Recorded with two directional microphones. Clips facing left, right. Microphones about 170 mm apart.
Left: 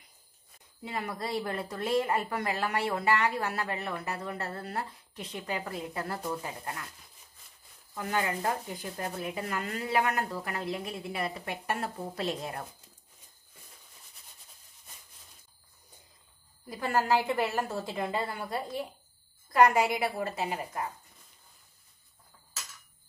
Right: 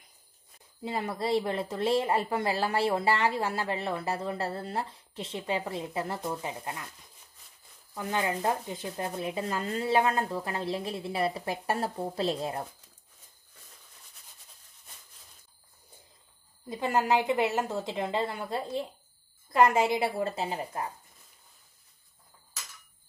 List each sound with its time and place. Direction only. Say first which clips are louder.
0.8 s a woman's voice: right 5 dB; 25° right (ahead or behind)
7.9 s a woman's voice: right 1 dB; 20° right (ahead or behind)
16.6 s a woman's voice: right 1 dB; 20° right (ahead or behind)